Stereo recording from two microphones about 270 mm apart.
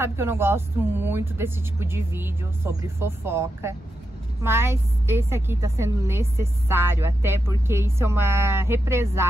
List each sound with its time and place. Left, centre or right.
0.0 s a woman's voice: centre